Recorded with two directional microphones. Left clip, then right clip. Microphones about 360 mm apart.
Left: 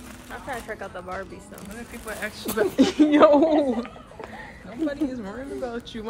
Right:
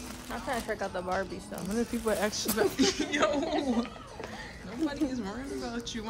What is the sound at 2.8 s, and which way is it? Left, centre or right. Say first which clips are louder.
Speech: left 11 dB; centre.